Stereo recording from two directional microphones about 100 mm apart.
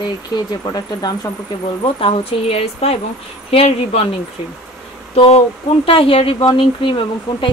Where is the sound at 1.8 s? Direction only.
65° left (ahead or behind).